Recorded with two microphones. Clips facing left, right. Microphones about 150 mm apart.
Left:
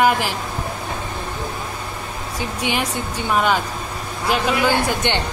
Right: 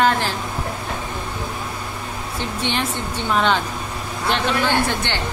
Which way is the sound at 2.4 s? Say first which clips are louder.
Left 1 dB; 10° left (ahead or behind).